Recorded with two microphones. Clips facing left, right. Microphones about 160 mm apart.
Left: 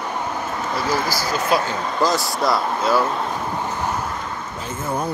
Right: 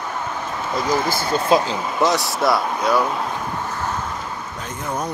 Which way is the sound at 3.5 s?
15° left (ahead or behind).